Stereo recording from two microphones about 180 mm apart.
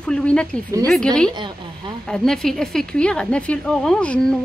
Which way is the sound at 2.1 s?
5° left (ahead or behind).